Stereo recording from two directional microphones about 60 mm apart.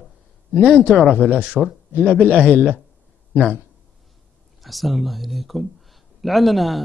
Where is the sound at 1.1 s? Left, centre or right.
Left; by 2.6 s centre.